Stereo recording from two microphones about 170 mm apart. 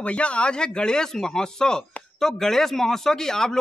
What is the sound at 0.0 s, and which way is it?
A man's voice, 5° left (ahead or behind).